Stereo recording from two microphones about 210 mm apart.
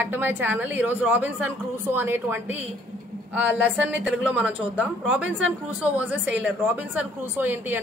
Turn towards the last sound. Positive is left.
turn(degrees=-10)  # may be behind; listen again after turning